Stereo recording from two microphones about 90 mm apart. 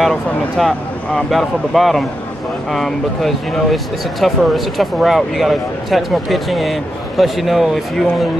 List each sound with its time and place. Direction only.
0.0 s speech: centre (ahead or behind)